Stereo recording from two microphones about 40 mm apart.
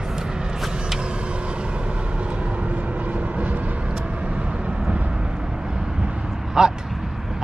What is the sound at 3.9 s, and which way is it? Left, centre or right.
Vehicle, right.